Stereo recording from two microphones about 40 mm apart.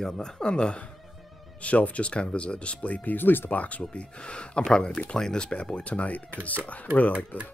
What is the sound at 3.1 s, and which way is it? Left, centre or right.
Speech, left.